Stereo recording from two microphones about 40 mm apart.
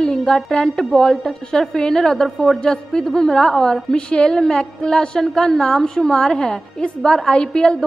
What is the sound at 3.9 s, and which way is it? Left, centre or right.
A woman's voice, left.